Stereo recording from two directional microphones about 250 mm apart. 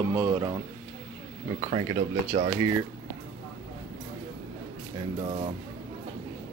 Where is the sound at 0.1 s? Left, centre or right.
Centre.